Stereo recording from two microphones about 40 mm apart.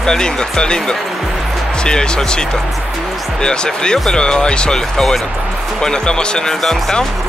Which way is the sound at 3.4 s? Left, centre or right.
Centre.